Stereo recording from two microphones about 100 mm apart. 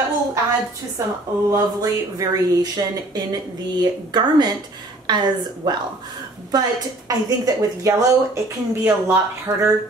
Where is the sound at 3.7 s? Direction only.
45° right (ahead or behind).